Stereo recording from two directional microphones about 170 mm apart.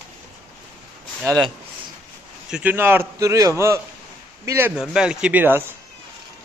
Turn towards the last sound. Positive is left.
turn(degrees=-10)  # may be behind; listen again after turning